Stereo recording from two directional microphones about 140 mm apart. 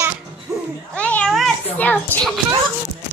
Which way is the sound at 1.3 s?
5° left (ahead or behind).